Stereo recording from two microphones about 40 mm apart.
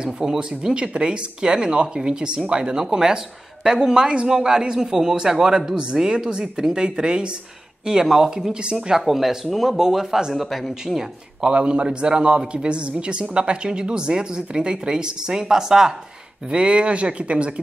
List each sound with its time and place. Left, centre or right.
0.4 s a man's voice: centre
11.5 s a man's voice: right
16.4 s a man's voice: right